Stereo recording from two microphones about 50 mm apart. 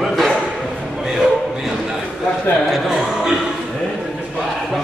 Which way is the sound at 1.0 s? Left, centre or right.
Centre.